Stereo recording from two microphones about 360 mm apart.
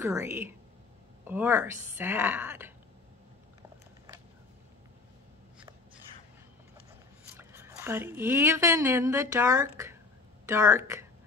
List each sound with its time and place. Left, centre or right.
0.0 s a woman's voice: centre
7.3 s a woman's voice: centre